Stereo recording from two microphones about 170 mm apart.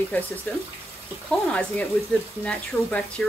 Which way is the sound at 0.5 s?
10° left (ahead or behind).